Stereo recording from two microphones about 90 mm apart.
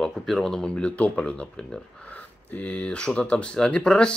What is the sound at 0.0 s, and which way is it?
Speech, centre (ahead or behind).